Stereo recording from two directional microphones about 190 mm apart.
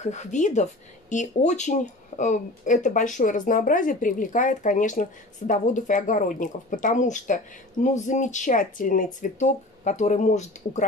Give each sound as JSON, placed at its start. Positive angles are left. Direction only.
{"t": 0.0, "sound": "speech", "side_deg": 40}